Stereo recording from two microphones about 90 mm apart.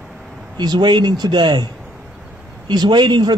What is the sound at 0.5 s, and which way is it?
A man's voice, 50° right (ahead or behind).